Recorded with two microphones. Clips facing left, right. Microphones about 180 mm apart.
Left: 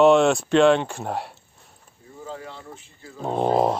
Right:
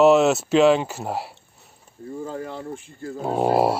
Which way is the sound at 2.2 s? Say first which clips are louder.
Right 3 dB; 50° right (ahead or behind).